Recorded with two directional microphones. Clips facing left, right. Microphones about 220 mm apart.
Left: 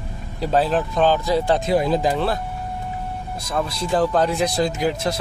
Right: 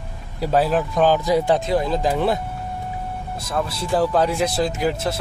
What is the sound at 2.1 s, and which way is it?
Speech, 20° right (ahead or behind).